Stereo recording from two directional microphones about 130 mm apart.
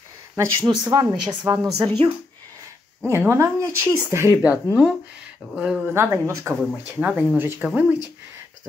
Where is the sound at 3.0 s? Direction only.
20° right (ahead or behind).